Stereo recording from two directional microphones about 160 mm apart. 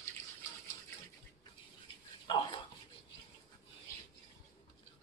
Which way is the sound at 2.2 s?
30° left (ahead or behind).